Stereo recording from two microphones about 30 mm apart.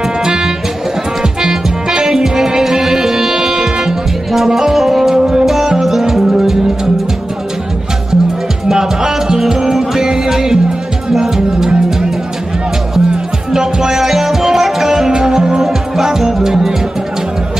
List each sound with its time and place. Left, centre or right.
0.2 s music: right; by 5.1 s centre
5.1 s music: right
5.4 s music: centre
8.6 s music: right
13.5 s music: right
13.9 s music: centre; by 15.6 s right
15.6 s music: centre